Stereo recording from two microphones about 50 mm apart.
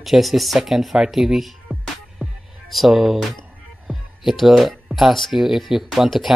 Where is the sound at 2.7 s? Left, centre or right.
Centre.